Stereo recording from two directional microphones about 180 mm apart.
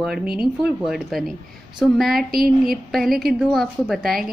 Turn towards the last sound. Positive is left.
turn(degrees=0)  # may be behind; listen again after turning